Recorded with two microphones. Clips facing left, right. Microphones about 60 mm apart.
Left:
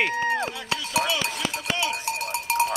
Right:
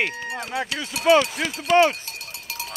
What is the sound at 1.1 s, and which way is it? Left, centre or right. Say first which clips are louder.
Speech: right 9 dB; right.